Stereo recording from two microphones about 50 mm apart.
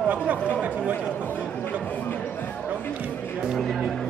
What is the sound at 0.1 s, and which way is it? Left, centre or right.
Speech, right.